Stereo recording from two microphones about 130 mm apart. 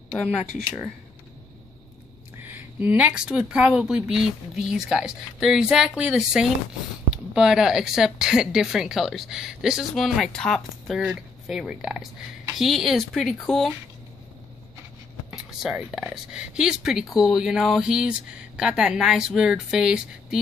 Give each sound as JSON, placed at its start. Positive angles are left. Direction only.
{"t": 2.5, "sound": "speech", "side_deg": -15}
{"t": 15.3, "sound": "speech", "side_deg": -5}